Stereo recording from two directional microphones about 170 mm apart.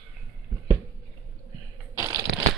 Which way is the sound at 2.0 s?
20° right (ahead or behind).